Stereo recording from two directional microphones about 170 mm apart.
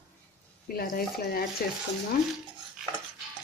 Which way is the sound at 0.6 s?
60° left (ahead or behind).